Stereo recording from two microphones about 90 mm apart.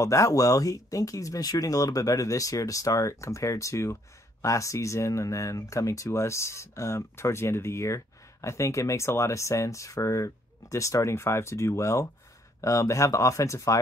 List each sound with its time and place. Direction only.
0.0 s speech: 35° left (ahead or behind)